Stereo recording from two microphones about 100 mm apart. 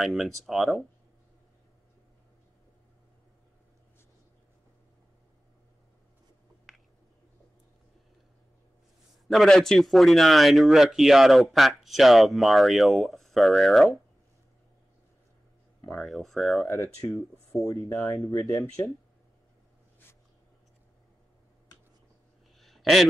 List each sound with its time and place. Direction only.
0.0 s speech: centre (ahead or behind)
9.3 s speech: centre (ahead or behind)
15.8 s speech: 5° left (ahead or behind)
17.6 s speech: 30° left (ahead or behind)
22.6 s a sound: centre (ahead or behind)